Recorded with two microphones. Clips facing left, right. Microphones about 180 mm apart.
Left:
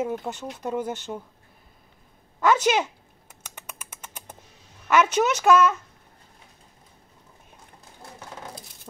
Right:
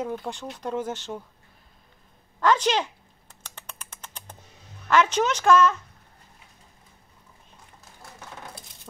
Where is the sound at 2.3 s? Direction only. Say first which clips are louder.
Left 1 dB; 10° left (ahead or behind).